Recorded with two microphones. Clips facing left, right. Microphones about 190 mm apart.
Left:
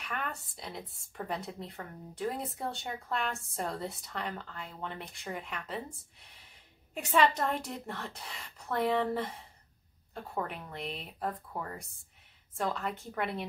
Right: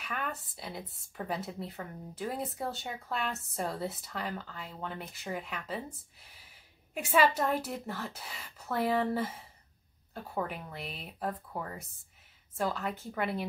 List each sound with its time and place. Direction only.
0.0 s a woman's voice: centre (ahead or behind)